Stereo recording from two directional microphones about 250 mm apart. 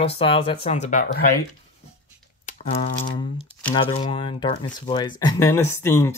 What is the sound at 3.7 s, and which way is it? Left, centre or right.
Speech, left.